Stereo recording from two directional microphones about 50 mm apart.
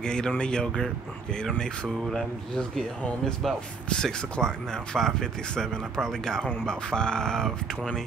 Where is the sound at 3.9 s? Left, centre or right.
Centre.